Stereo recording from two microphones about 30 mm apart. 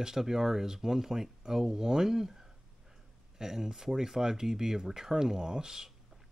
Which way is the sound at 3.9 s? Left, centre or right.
Centre.